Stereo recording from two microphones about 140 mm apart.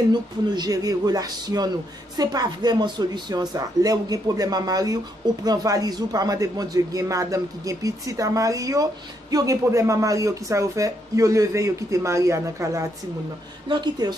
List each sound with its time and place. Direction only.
0.1 s speech: 30° right (ahead or behind)